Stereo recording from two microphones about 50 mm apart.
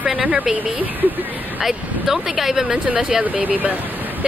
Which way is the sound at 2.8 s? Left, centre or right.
Right.